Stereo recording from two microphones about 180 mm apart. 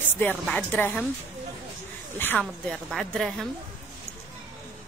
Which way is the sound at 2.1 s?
10° left (ahead or behind).